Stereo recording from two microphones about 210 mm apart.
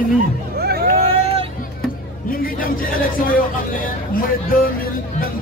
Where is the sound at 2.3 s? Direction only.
40° left (ahead or behind).